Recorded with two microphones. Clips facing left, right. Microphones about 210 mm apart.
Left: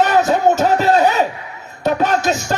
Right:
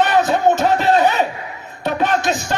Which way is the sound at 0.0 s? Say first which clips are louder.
Left 1 dB; 40° left (ahead or behind).